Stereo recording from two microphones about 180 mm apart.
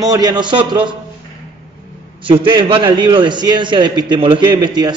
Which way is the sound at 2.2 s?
30° right (ahead or behind).